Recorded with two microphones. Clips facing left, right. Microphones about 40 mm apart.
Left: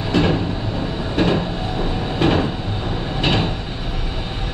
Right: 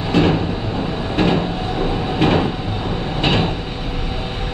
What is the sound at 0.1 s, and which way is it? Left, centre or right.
Train, centre.